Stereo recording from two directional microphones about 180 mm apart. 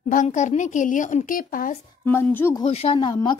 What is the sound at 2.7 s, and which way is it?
Speech, 35° left (ahead or behind).